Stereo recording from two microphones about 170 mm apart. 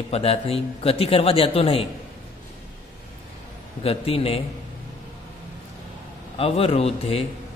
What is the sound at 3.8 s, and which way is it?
Speech, 35° left (ahead or behind).